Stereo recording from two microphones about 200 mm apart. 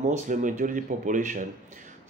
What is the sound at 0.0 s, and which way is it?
Speech, 40° right (ahead or behind).